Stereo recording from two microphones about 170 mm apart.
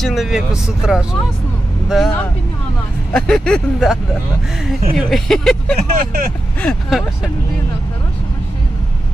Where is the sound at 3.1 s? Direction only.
5° left (ahead or behind).